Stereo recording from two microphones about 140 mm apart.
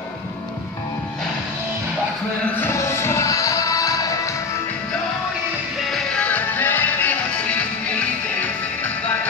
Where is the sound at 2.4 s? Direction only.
15° left (ahead or behind).